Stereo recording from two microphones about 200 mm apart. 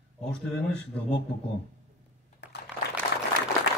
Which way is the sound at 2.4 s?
60° left (ahead or behind).